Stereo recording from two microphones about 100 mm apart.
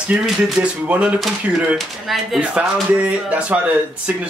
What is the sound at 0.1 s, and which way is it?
Speech, 10° right (ahead or behind).